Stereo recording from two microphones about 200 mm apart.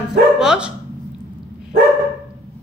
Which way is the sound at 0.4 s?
5° right (ahead or behind).